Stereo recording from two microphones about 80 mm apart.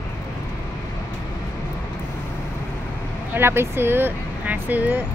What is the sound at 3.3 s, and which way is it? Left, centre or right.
Speech, right.